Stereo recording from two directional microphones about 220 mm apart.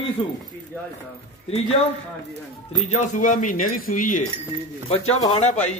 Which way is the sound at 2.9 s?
35° left (ahead or behind).